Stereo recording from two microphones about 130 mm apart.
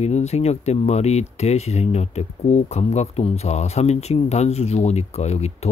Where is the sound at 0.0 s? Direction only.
55° left (ahead or behind).